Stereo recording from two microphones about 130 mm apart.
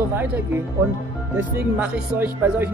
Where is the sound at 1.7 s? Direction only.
15° right (ahead or behind).